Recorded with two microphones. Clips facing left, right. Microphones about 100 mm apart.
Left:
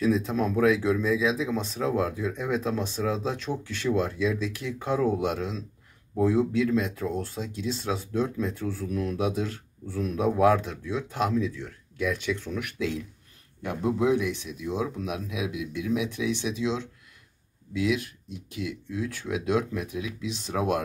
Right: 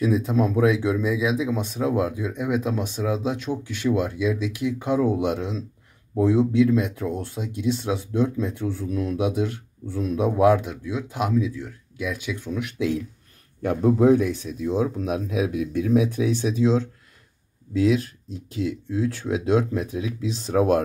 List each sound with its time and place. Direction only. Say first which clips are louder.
0.0 s speech: right 3 dB; 20° right (ahead or behind)
12.5 s speech: right 4 dB; 20° right (ahead or behind)
13.6 s speech: right 7 dB; 50° right (ahead or behind)